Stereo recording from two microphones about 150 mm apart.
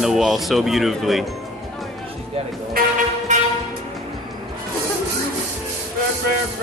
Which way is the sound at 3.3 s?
55° right (ahead or behind).